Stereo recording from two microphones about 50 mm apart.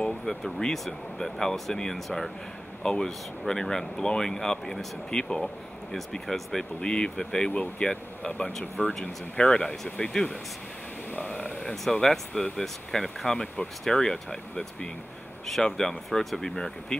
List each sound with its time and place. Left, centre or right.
0.0 s speech: centre; by 10.1 s left
11.1 s a sound: left
11.6 s speech: centre